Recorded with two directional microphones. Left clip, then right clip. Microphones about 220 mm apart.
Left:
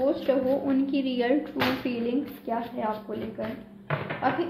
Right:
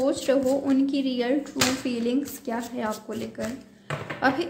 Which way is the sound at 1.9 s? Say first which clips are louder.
Right 2 dB; 30° right (ahead or behind).